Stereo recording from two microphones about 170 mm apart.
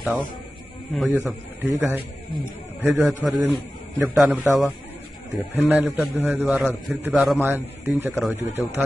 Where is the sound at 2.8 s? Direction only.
Centre (ahead or behind).